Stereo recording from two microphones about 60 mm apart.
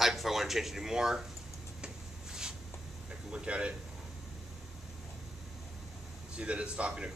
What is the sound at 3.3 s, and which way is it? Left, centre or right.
Speech, centre.